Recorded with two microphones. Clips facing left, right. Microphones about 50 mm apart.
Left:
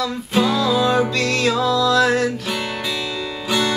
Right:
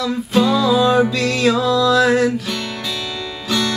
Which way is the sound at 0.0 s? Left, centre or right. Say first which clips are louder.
Right 3 dB; centre.